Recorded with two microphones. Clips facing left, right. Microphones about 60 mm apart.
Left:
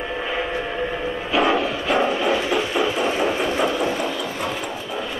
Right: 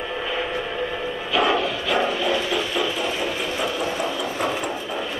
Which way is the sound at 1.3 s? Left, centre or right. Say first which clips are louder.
Left 1 dB; left.